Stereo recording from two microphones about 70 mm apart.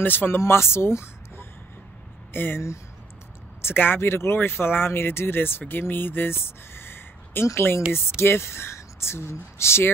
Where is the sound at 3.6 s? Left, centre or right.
Left.